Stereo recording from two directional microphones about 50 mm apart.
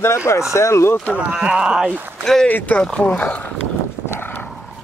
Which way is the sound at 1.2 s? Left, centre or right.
Right.